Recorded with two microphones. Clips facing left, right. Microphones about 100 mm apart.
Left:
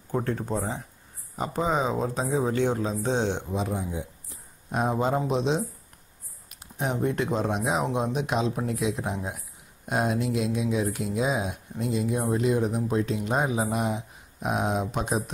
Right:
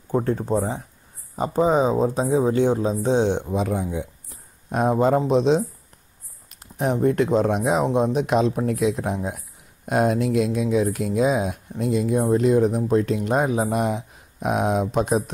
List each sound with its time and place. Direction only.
0.1 s speech: 30° right (ahead or behind)
3.6 s speech: 60° right (ahead or behind)
4.6 s speech: 45° right (ahead or behind)